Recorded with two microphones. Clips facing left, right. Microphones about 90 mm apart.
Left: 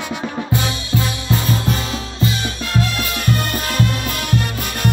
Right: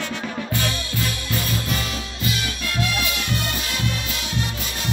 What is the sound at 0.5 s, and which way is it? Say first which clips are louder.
Music: left 7 dB; 20° left (ahead or behind).